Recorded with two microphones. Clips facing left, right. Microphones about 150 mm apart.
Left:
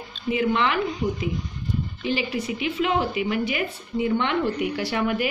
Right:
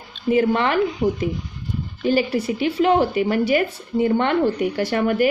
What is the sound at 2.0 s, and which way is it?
A woman's voice, 40° right (ahead or behind).